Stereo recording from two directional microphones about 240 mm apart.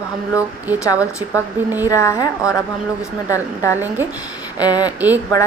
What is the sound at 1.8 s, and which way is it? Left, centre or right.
Speech, centre.